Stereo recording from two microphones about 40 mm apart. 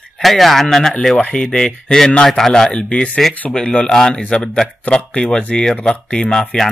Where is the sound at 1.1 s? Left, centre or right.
Left.